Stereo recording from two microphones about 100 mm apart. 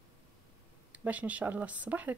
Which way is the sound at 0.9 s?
15° right (ahead or behind).